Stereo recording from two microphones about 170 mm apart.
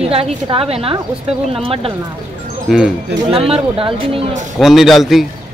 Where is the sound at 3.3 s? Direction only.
35° right (ahead or behind).